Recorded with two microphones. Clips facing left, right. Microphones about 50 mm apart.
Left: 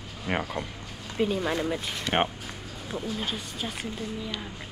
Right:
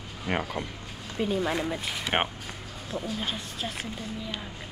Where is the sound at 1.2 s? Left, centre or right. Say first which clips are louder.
Left 2 dB; left.